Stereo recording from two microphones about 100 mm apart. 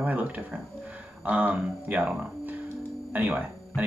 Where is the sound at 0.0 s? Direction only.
15° right (ahead or behind).